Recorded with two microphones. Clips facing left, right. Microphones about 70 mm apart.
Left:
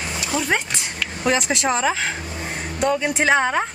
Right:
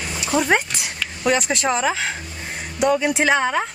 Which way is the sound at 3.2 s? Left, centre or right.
Centre.